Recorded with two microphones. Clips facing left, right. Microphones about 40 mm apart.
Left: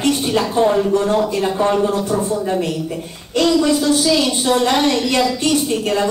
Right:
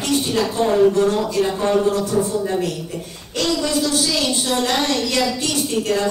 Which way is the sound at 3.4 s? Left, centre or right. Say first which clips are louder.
Left 5 dB; centre.